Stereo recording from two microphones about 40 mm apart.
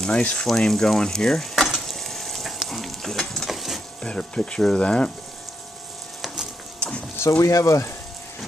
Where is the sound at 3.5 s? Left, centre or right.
Centre.